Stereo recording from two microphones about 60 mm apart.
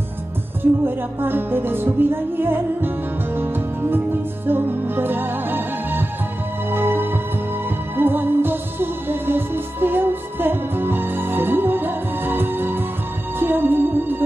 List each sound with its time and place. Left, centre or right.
0.8 s music: right